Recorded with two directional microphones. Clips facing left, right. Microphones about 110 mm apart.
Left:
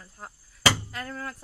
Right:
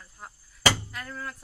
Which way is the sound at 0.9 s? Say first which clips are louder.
Left 2 dB; 35° left (ahead or behind).